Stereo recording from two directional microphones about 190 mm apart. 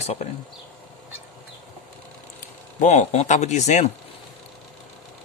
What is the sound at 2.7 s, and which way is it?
Speech, 35° left (ahead or behind).